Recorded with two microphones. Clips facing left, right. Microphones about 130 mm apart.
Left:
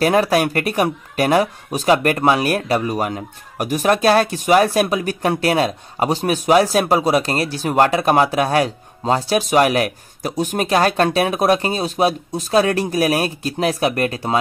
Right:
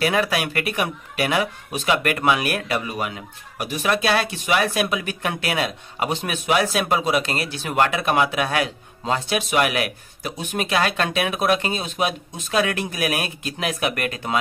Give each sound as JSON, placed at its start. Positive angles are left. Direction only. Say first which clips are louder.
{"t": 0.0, "sound": "speech", "louder": "left 6 dB", "side_deg": 40}